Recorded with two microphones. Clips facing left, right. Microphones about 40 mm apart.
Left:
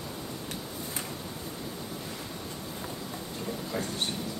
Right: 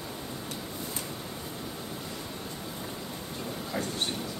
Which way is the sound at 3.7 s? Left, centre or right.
Centre.